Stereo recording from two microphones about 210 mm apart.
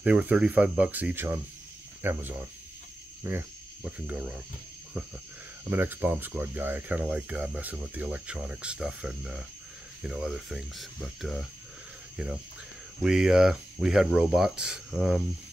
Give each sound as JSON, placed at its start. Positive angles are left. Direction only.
{"t": 0.0, "sound": "speech", "side_deg": -5}
{"t": 3.3, "sound": "cricket", "side_deg": -10}
{"t": 5.7, "sound": "speech", "side_deg": -10}